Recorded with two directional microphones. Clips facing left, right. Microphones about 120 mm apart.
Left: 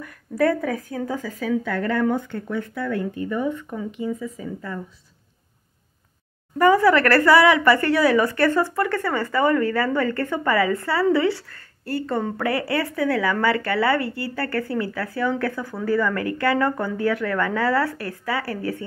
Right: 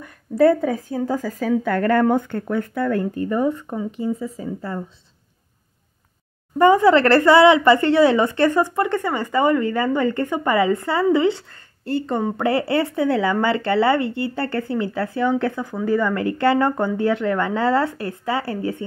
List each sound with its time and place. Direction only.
0.0 s speech: 25° right (ahead or behind)
6.6 s speech: 25° right (ahead or behind)
12.4 s speech: 25° right (ahead or behind)